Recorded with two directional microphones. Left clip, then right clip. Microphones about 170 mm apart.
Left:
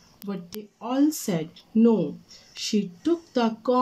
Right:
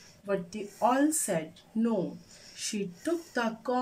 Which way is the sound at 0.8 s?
50° left (ahead or behind).